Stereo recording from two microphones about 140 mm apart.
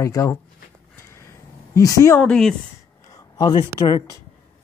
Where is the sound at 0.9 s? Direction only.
20° left (ahead or behind).